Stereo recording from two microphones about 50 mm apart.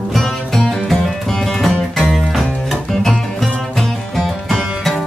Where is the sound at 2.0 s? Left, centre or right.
Centre.